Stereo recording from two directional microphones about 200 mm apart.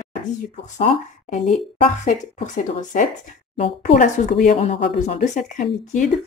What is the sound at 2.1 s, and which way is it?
Speech, 40° left (ahead or behind).